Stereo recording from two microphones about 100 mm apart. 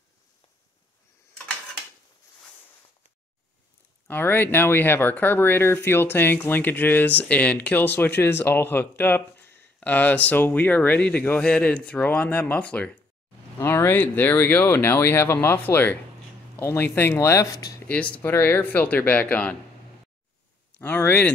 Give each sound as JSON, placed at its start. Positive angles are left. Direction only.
{"t": 4.1, "sound": "speech", "side_deg": 20}
{"t": 17.8, "sound": "speech", "side_deg": 15}
{"t": 20.8, "sound": "speech", "side_deg": 20}